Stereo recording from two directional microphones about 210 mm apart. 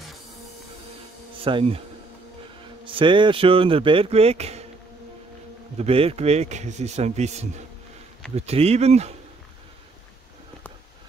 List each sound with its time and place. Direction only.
1.4 s speech: 25° right (ahead or behind)
2.8 s speech: 25° right (ahead or behind)
5.8 s a man's voice: 25° right (ahead or behind)